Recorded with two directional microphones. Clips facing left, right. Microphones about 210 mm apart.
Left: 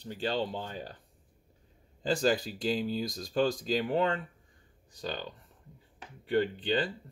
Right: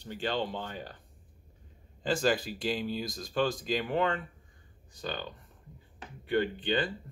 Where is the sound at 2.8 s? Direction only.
35° left (ahead or behind).